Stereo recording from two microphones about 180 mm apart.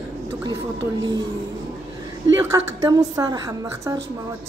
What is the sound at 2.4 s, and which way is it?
A woman's voice, 15° right (ahead or behind).